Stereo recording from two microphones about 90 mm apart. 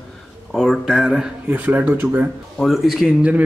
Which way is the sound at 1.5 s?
20° right (ahead or behind).